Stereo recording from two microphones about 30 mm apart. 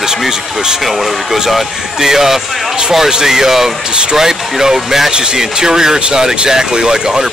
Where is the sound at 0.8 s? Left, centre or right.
Centre.